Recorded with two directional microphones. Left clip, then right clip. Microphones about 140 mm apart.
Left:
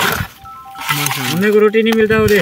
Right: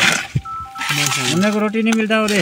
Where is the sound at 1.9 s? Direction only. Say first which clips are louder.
Left 5 dB; 90° left.